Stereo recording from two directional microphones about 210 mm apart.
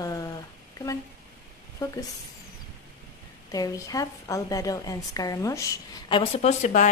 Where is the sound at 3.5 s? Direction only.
15° left (ahead or behind).